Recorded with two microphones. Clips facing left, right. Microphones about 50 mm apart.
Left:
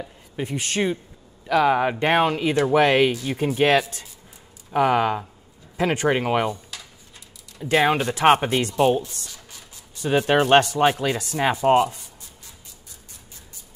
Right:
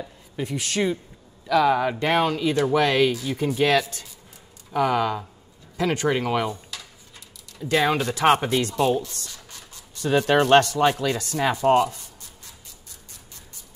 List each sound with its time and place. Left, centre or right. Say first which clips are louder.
0.0 s a sound: left 1 dB; centre
1.5 s speech: left 1 dB; left
4.7 s speech: left 3 dB; left
6.5 s a sound: left 1 dB; centre
7.6 s speech: left 2 dB; left
9.3 s speech: right 1 dB; centre